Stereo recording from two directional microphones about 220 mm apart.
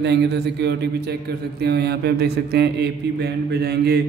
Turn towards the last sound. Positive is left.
turn(degrees=-45)  # may be behind; listen again after turning